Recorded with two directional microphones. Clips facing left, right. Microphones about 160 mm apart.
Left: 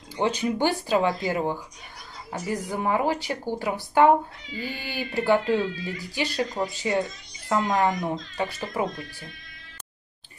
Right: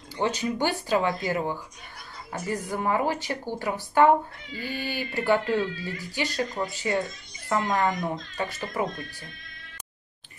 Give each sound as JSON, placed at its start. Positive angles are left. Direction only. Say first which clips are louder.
{"t": 0.2, "sound": "speech", "louder": "left 2 dB", "side_deg": 15}